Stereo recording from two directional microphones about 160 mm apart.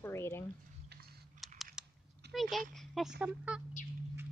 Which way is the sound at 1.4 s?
Centre (ahead or behind).